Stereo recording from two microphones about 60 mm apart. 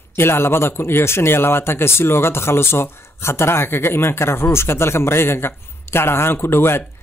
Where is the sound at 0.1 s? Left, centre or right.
Left.